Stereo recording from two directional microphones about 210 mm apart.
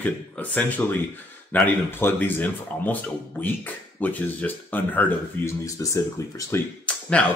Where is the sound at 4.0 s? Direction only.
10° left (ahead or behind).